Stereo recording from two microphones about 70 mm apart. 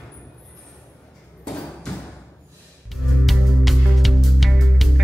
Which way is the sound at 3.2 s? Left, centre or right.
Centre.